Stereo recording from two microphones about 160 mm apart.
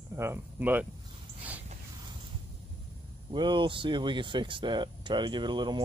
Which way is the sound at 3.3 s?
30° right (ahead or behind).